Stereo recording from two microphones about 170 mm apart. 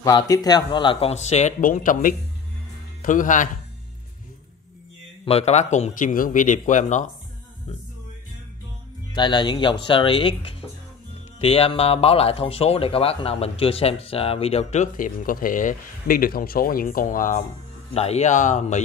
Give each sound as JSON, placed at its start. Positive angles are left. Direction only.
{"t": 0.0, "sound": "speech", "side_deg": 20}
{"t": 5.2, "sound": "speech", "side_deg": 40}
{"t": 9.1, "sound": "speech", "side_deg": 25}
{"t": 17.9, "sound": "speech", "side_deg": 40}